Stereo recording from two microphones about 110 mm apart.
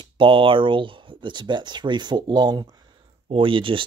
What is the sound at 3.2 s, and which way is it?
Speech, 55° right (ahead or behind).